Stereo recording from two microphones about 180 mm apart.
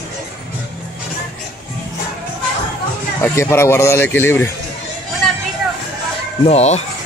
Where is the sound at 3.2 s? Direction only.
15° left (ahead or behind).